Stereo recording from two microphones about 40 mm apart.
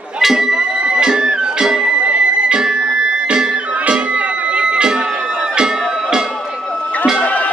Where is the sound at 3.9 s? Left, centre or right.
Right.